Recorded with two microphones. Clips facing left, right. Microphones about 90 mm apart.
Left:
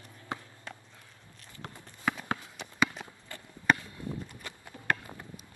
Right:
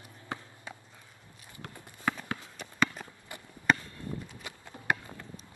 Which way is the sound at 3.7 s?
Centre (ahead or behind).